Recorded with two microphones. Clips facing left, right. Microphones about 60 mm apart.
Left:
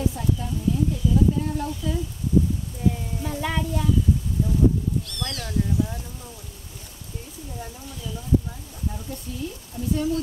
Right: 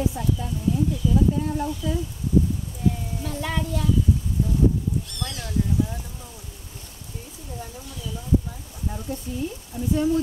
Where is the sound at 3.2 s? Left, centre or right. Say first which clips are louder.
Left 1 dB; centre.